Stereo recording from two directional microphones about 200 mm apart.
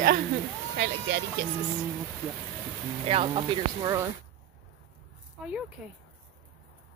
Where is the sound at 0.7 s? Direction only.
55° right (ahead or behind).